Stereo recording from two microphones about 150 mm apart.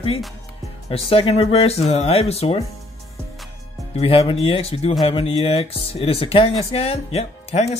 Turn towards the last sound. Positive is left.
turn(degrees=45)  # may be behind; listen again after turning